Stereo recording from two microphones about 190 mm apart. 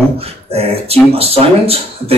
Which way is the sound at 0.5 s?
30° right (ahead or behind).